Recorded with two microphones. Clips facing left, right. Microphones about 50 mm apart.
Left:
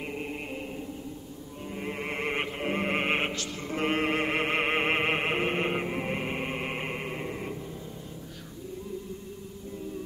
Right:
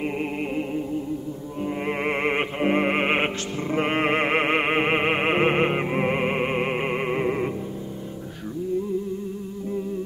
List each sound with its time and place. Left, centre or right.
0.2 s music: right
1.9 s music: right
5.4 s music: right
5.9 s music: right